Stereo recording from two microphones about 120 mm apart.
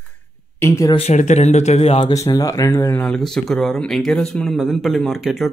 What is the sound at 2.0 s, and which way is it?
Speech, 30° left (ahead or behind).